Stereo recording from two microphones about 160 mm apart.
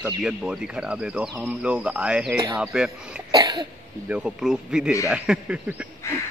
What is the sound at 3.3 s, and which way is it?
Cough, 25° right (ahead or behind).